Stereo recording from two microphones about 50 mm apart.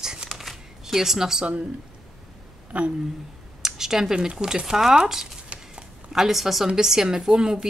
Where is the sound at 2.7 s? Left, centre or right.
Right.